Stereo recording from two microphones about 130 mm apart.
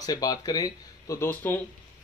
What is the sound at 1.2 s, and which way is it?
Speech, 15° left (ahead or behind).